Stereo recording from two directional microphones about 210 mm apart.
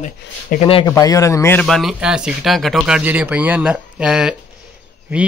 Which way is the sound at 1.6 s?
Centre (ahead or behind).